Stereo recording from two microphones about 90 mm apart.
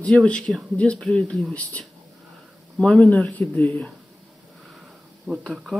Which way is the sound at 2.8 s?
10° left (ahead or behind).